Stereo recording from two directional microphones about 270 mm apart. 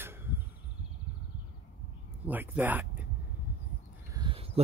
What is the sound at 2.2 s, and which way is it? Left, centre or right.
Speech, centre.